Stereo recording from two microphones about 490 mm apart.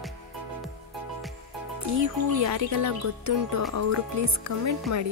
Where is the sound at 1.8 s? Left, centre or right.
Right.